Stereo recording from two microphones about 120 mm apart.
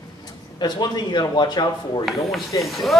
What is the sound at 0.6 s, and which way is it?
Speech, 35° left (ahead or behind).